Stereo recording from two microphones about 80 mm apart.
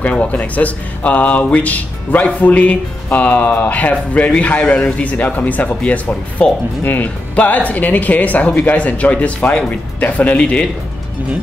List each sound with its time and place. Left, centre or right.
0.0 s speech: centre